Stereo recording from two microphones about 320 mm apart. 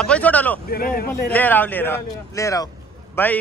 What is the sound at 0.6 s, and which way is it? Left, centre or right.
Speech, left.